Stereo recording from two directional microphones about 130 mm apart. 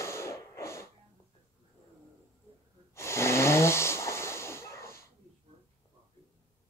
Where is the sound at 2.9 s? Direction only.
20° left (ahead or behind).